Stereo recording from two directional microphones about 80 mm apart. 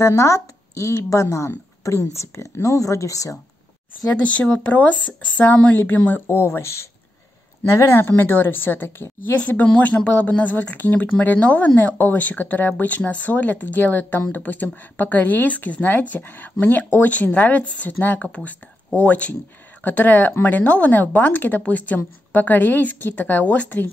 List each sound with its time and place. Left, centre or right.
0.0 s a woman's voice: left
4.1 s a woman's voice: centre
9.4 s speech: centre